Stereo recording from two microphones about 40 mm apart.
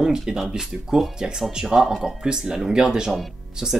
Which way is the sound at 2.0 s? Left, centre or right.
Centre.